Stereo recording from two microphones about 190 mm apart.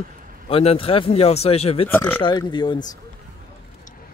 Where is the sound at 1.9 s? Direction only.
10° left (ahead or behind).